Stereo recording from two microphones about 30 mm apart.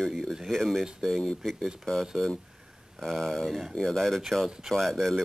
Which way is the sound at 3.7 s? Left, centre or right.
Centre.